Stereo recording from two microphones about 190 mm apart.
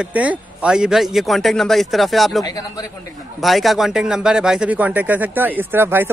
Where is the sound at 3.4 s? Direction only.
Centre (ahead or behind).